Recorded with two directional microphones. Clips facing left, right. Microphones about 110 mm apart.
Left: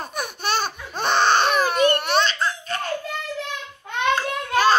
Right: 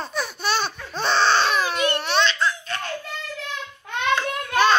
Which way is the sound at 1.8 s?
45° left (ahead or behind).